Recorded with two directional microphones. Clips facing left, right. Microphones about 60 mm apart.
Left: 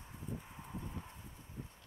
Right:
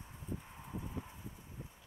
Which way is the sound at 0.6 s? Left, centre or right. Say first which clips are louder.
Right 2 dB; centre.